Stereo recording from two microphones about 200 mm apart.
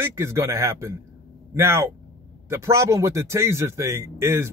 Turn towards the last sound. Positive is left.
turn(degrees=-15)  # may be behind; listen again after turning